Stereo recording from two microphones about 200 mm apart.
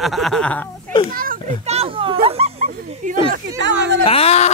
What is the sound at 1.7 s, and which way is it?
Speech, 30° right (ahead or behind).